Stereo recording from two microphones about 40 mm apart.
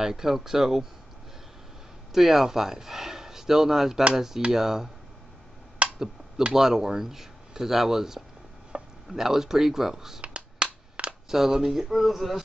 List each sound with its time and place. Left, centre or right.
0.0 s speech: centre
2.1 s speech: centre
5.8 s a sound: right
6.5 s speech: centre
8.7 s chopping: right
9.1 s speech: centre
10.2 s a sound: right
11.2 s speech: centre